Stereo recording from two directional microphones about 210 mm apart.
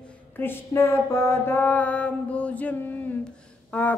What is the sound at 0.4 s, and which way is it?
Mantra, 10° left (ahead or behind).